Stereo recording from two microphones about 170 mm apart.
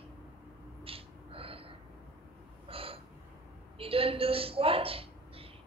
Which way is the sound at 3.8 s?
35° right (ahead or behind).